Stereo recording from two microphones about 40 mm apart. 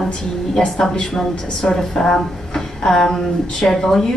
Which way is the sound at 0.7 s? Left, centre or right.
Centre.